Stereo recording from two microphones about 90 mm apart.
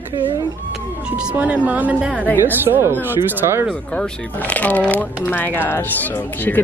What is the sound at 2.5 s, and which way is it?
Speech, 30° right (ahead or behind).